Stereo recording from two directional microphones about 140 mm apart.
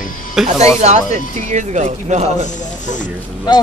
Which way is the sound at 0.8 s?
55° right (ahead or behind).